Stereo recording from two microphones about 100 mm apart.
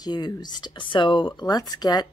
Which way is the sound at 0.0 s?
45° left (ahead or behind).